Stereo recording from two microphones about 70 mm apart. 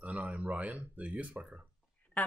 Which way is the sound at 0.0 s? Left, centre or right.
Centre.